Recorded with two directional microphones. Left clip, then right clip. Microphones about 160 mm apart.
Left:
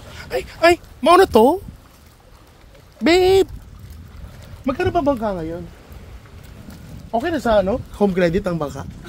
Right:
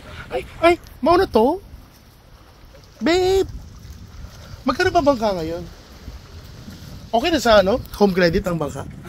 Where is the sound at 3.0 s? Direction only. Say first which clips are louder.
Left 3 dB; 30° left (ahead or behind).